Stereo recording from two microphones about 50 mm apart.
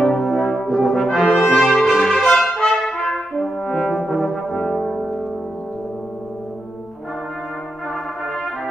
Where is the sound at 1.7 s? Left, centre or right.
Centre.